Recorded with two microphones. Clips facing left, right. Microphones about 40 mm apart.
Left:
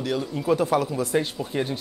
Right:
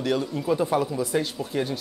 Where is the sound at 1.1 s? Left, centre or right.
Centre.